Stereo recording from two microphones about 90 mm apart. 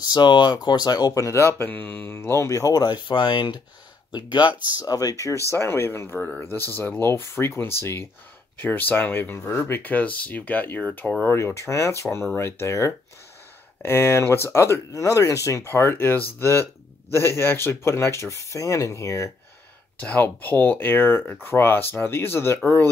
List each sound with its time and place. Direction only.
0.0 s speech: 55° left (ahead or behind); by 2.7 s 35° left (ahead or behind)
2.7 s speech: 50° left (ahead or behind)
4.7 s speech: 45° left (ahead or behind); by 6.1 s 25° left (ahead or behind)
6.1 s speech: 10° left (ahead or behind)
6.4 s speech: 25° left (ahead or behind)
11.2 s speech: 30° left (ahead or behind)
20.0 s speech: 20° left (ahead or behind)